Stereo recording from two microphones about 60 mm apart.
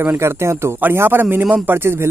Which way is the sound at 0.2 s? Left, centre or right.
Right.